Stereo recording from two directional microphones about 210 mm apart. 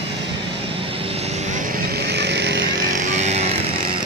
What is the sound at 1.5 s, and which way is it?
Vehicle, 45° right (ahead or behind).